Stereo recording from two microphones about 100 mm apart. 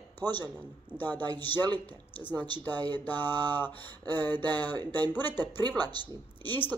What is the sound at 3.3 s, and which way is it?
Speech, 45° right (ahead or behind).